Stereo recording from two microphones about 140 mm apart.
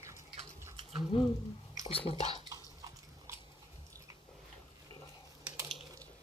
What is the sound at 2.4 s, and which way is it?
Bathtub, 25° right (ahead or behind).